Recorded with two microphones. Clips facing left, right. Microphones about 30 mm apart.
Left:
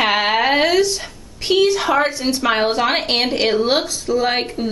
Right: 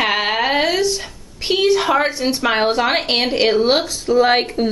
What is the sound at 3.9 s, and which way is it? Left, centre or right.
Speech, centre.